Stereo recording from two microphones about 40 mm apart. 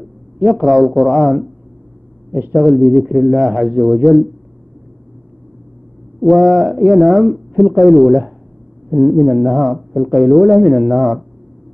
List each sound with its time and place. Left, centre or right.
0.0 s a man's voice: centre
2.5 s a man's voice: centre
6.2 s a man's voice: centre